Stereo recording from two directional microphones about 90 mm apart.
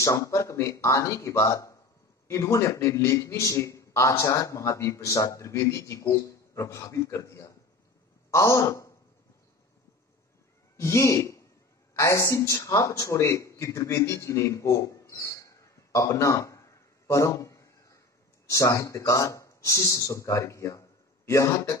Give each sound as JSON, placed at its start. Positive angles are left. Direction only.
{"t": 0.0, "sound": "a man's voice", "side_deg": 35}
{"t": 10.8, "sound": "a man's voice", "side_deg": 35}